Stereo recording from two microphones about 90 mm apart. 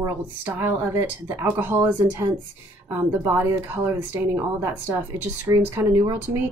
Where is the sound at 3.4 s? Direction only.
30° right (ahead or behind).